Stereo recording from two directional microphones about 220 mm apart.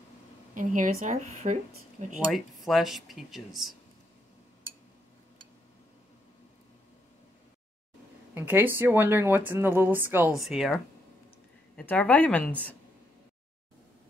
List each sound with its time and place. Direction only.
0.6 s speech: 35° right (ahead or behind)
2.3 s speech: centre (ahead or behind)
8.4 s a woman's voice: 10° right (ahead or behind); by 12.7 s 5° left (ahead or behind)